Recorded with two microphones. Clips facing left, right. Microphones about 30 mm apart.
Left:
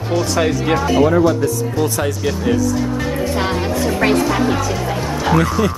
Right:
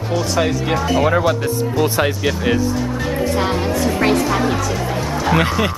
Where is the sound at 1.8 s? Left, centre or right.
Right.